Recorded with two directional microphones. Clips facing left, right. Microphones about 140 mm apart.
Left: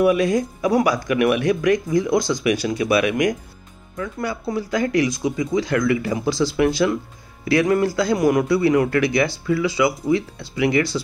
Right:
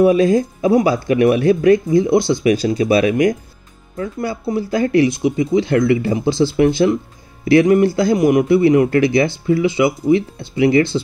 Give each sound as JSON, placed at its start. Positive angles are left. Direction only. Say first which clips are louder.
{"t": 0.0, "sound": "speech", "louder": "right 5 dB", "side_deg": -30}